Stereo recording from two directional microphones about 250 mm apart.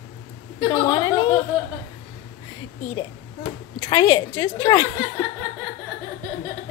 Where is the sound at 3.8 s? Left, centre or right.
Centre.